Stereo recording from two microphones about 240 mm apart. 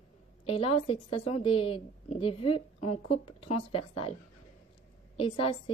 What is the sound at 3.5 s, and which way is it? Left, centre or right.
Speech, left.